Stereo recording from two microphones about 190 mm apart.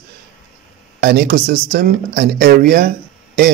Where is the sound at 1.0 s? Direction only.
55° right (ahead or behind).